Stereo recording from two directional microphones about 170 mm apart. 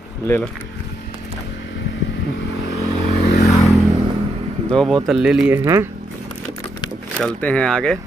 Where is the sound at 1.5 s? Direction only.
90° left.